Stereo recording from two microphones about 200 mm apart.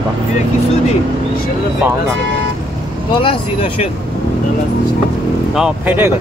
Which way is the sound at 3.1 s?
25° left (ahead or behind).